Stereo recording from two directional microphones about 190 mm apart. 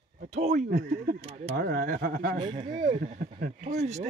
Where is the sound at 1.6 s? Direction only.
50° right (ahead or behind).